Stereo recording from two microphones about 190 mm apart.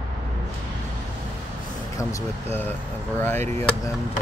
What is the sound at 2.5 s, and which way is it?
Speech, 10° left (ahead or behind).